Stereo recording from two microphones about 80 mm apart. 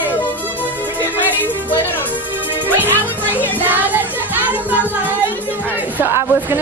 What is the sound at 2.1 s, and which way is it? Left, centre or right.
Music, right.